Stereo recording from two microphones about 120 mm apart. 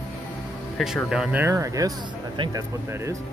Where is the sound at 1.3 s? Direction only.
25° right (ahead or behind).